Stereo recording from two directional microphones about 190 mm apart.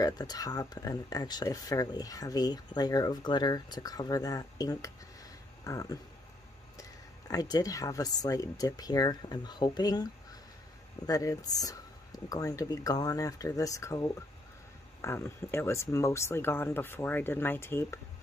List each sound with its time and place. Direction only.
0.0 s speech: 20° left (ahead or behind)
11.1 s speech: 20° left (ahead or behind)